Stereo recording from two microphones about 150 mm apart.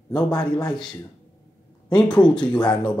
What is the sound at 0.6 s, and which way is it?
Speech, 5° left (ahead or behind).